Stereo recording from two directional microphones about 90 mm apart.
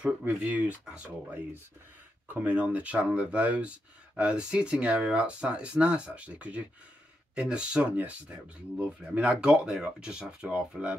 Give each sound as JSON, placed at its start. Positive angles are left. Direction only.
{"t": 0.2, "sound": "speech", "side_deg": -15}
{"t": 2.4, "sound": "speech", "side_deg": -15}